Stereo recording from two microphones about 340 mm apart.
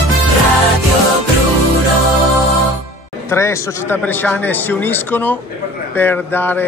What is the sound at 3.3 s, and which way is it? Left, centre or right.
A man's voice, centre.